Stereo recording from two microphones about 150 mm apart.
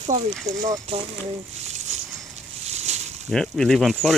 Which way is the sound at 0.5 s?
25° right (ahead or behind).